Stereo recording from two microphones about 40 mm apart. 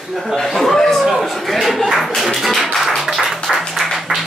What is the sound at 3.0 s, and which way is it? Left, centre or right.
Music, centre.